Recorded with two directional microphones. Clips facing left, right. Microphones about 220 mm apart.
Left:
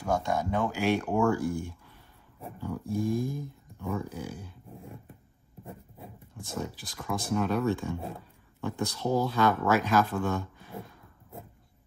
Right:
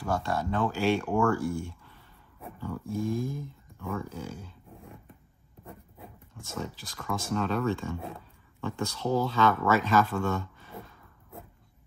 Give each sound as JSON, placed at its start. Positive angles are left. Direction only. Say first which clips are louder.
{"t": 0.0, "sound": "speech", "louder": "left 1 dB", "side_deg": 15}
{"t": 6.3, "sound": "speech", "louder": "left 1 dB", "side_deg": 15}